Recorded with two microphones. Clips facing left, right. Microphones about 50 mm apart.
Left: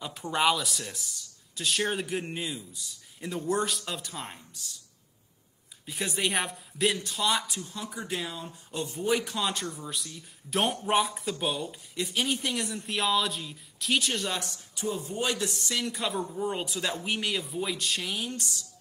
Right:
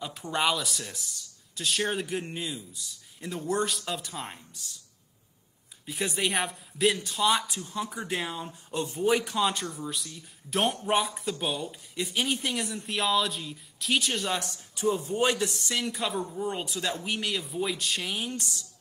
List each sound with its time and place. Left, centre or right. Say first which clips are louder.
0.0 s speech: left 2 dB; centre
5.9 s speech: right 1 dB; centre
7.4 s speech: right 4 dB; right
9.3 s speech: right 3 dB; centre
14.8 s speech: right 5 dB; right
15.6 s speech: right 1 dB; centre